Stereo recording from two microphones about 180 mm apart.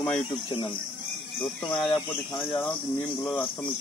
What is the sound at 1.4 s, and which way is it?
Cricket, centre (ahead or behind).